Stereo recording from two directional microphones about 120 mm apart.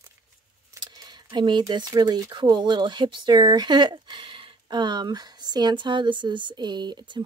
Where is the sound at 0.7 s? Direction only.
35° right (ahead or behind).